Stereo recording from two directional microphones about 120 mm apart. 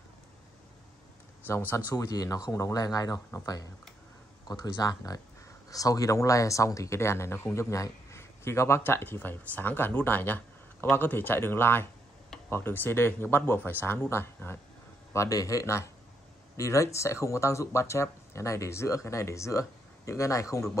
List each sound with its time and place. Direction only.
1.5 s speech: 15° left (ahead or behind)
1.9 s speech: 30° left (ahead or behind)
4.5 s speech: 35° left (ahead or behind)